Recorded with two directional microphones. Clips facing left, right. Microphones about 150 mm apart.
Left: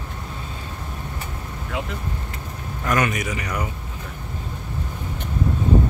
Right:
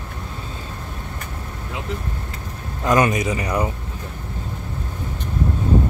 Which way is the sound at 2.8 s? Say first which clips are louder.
Right 5 dB; 25° right (ahead or behind).